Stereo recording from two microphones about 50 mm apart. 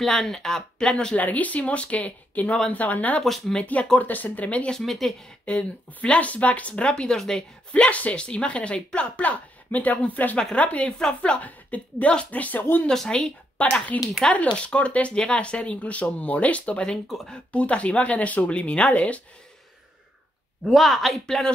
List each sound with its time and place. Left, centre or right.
0.0 s speech: centre
1.1 s speech: left
3.3 s speech: centre
4.0 s speech: left
4.6 s speech: centre
5.4 s speech: left
7.7 s speech: left
11.0 s speech: centre
11.4 s a woman's voice: left
13.1 s speech: centre
17.1 s speech: centre
17.5 s speech: left
20.6 s speech: centre